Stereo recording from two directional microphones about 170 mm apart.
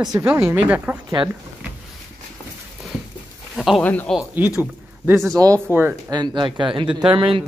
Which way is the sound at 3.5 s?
Centre (ahead or behind).